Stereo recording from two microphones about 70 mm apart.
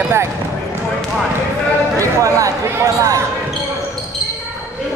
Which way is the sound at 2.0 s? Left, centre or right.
Right.